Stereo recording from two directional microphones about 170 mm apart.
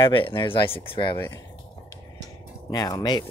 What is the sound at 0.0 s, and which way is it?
Speech, 30° left (ahead or behind).